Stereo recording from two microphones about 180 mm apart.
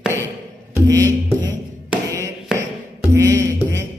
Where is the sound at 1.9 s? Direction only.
15° right (ahead or behind).